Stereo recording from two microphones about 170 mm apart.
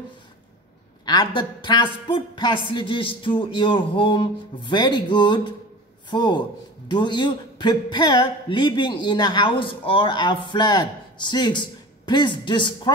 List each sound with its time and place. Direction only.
1.0 s a man's voice: 25° left (ahead or behind)